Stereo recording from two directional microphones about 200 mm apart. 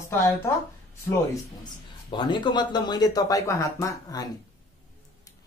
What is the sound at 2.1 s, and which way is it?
Speech, 25° left (ahead or behind).